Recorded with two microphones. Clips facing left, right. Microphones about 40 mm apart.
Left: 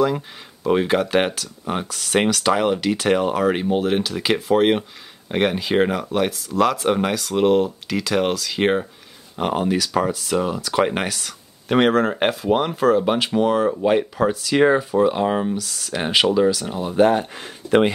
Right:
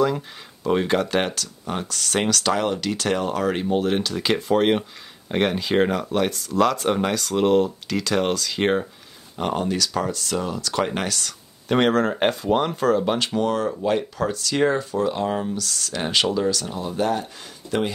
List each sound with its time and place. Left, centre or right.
0.7 s speech: centre
16.9 s speech: left